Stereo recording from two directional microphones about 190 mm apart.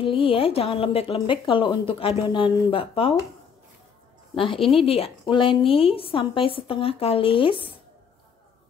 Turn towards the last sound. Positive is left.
turn(degrees=30)  # may be behind; listen again after turning